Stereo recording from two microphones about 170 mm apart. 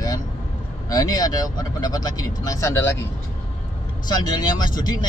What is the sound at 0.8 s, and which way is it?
Speech, 20° left (ahead or behind).